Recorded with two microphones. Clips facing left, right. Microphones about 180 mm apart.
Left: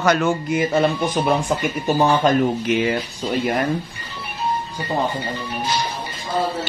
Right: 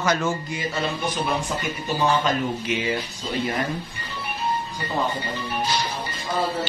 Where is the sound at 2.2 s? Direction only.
50° left (ahead or behind).